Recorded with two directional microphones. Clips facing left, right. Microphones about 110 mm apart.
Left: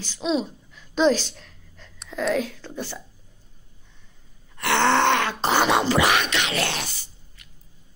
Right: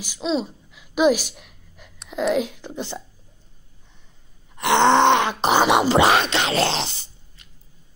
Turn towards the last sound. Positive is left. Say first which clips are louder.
# right 1 dB
turn(degrees=-25)  # may be behind; listen again after turning